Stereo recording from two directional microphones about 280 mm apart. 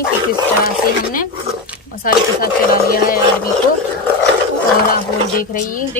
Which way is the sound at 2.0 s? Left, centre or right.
Left.